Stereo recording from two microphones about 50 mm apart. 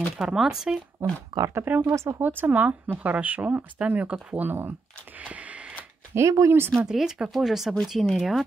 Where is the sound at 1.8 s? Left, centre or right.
Right.